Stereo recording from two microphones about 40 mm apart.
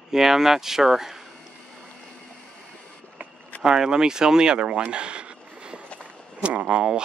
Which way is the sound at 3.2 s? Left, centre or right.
Right.